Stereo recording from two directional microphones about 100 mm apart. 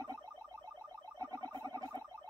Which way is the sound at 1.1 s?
40° right (ahead or behind).